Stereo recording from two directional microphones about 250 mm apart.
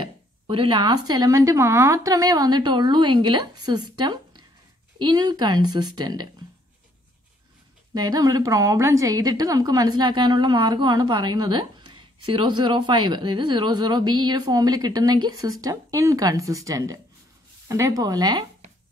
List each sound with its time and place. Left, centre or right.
0.0 s a woman's voice: centre
3.9 s a sound: centre
4.9 s a woman's voice: centre
7.9 s a woman's voice: centre